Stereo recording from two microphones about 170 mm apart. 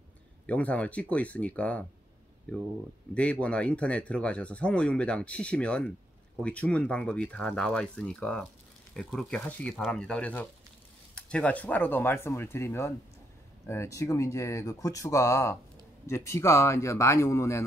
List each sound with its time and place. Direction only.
0.5 s speech: 10° left (ahead or behind)
3.2 s speech: 5° left (ahead or behind)